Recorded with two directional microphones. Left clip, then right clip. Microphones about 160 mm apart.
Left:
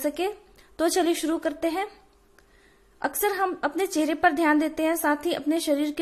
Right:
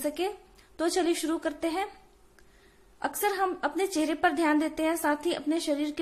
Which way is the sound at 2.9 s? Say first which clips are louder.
Left 3 dB; 25° left (ahead or behind).